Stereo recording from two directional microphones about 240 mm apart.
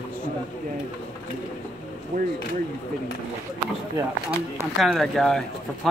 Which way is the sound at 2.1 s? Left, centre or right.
Right.